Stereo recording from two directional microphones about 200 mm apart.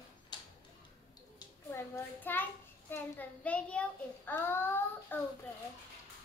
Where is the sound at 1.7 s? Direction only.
15° left (ahead or behind).